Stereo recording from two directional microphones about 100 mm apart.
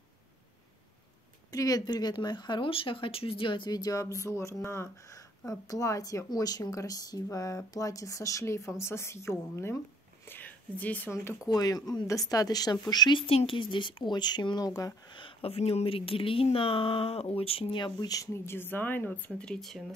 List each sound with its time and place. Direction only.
1.5 s speech: 40° left (ahead or behind); by 3.7 s 55° left (ahead or behind)
3.7 s speech: 35° left (ahead or behind); by 11.3 s 20° left (ahead or behind)
11.4 s speech: 40° left (ahead or behind)
13.3 s speech: 70° left (ahead or behind); by 15.1 s 35° left (ahead or behind)
15.1 s speech: 65° left (ahead or behind); by 19.8 s 5° left (ahead or behind)